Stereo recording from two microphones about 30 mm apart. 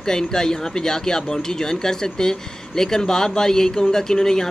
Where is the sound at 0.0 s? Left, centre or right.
Left.